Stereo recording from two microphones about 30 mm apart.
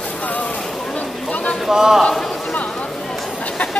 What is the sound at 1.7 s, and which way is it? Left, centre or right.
Speech, centre.